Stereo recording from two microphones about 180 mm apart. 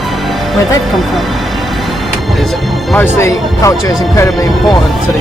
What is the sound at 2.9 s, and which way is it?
Speech, 15° left (ahead or behind).